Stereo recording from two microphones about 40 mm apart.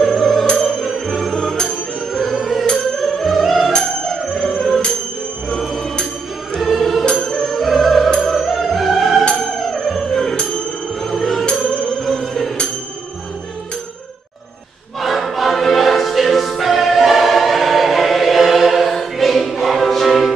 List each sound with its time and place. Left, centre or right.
0.2 s opera: centre
0.6 s music: centre
1.3 s music: centre
6.6 s music: centre
7.2 s music: centre
8.3 s opera: centre
9.6 s music: centre
15.0 s music: centre